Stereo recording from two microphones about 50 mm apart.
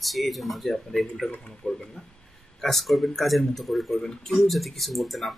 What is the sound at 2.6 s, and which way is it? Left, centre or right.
Speech, centre.